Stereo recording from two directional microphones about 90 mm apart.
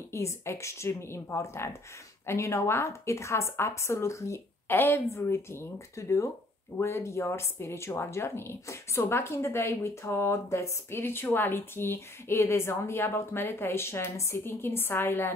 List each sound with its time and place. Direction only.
0.1 s a woman's voice: 30° left (ahead or behind)